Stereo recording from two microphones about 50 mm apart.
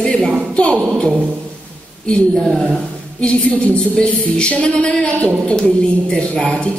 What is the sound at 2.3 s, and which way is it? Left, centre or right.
Speech, centre.